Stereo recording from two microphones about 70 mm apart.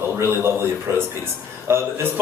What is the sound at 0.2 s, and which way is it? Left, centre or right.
A man's voice, right.